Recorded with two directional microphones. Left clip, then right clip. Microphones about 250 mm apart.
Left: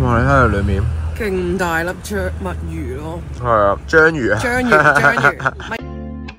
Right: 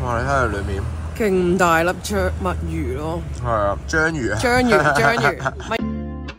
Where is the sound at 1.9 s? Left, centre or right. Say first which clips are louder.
Right 1 dB; centre.